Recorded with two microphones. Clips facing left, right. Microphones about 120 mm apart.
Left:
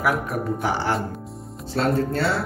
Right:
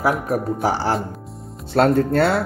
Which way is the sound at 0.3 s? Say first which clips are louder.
Right 4 dB; 35° right (ahead or behind).